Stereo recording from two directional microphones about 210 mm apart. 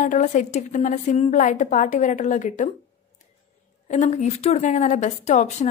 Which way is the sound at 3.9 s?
35° left (ahead or behind).